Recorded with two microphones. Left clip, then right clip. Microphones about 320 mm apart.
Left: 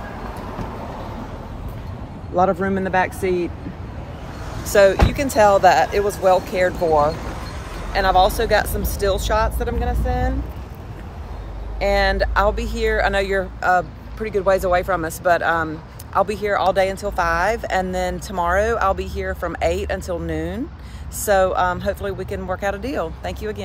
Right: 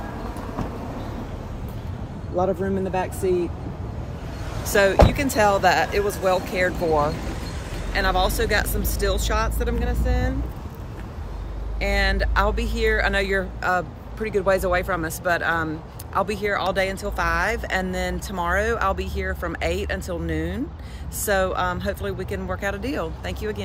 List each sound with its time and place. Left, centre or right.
2.3 s speech: left
4.6 s speech: centre
6.8 s vehicle: centre
7.9 s speech: centre
11.8 s speech: centre